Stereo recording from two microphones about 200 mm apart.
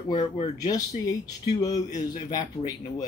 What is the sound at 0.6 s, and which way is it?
Speech, 20° left (ahead or behind).